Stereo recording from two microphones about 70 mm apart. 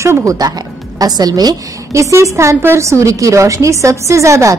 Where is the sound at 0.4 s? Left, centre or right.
Right.